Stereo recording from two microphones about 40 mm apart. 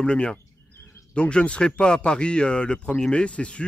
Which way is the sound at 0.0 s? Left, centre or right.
Left.